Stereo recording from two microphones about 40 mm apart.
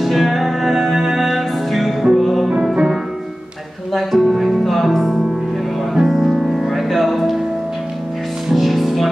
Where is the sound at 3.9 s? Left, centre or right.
Centre.